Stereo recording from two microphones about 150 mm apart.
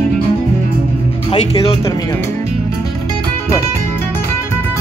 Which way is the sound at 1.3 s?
40° left (ahead or behind).